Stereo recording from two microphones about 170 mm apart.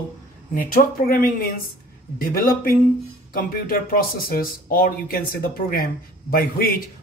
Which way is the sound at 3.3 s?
55° left (ahead or behind).